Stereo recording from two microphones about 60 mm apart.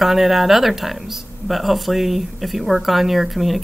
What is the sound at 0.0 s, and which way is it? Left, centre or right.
Speech, centre.